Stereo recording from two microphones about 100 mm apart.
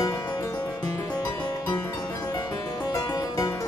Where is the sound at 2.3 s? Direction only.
45° left (ahead or behind).